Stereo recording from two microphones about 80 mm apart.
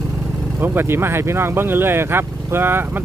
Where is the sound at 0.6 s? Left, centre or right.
Right.